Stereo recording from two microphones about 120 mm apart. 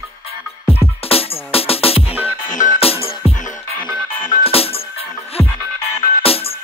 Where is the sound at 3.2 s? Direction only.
55° left (ahead or behind).